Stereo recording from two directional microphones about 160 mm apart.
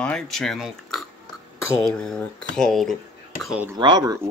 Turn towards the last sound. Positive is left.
turn(degrees=-25)  # may be behind; listen again after turning